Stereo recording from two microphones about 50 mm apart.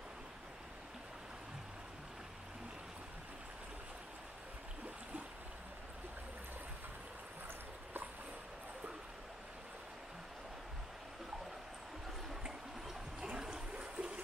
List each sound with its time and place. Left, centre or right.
12.4 s water: centre